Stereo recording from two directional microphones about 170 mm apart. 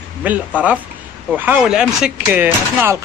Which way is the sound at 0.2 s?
10° right (ahead or behind).